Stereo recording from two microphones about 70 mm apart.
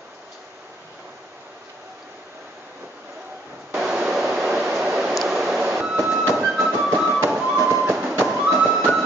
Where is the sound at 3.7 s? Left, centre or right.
Centre.